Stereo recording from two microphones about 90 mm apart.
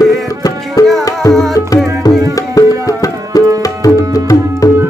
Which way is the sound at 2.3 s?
40° left (ahead or behind).